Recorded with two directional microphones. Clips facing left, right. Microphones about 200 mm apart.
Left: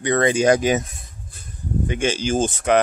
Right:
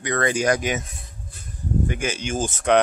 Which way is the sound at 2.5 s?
10° left (ahead or behind).